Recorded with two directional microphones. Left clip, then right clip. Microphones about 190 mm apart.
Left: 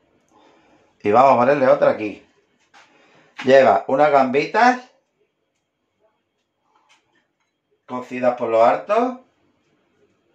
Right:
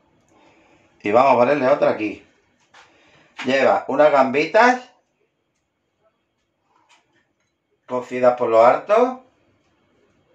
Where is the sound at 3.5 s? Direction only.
35° left (ahead or behind).